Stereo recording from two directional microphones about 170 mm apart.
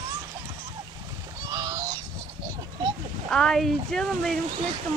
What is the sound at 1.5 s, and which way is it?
Goose, 20° right (ahead or behind).